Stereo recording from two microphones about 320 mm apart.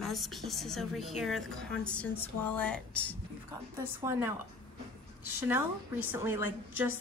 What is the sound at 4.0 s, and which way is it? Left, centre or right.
Speech, centre.